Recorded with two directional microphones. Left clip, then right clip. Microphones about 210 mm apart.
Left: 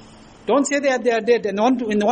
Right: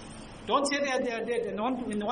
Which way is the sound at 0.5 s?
35° left (ahead or behind).